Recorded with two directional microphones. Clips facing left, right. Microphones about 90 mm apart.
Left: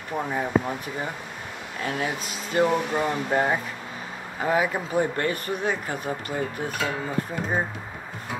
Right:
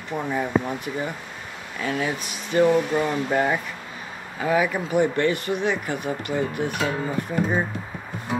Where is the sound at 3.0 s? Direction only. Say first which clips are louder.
Right 1 dB; 40° left (ahead or behind).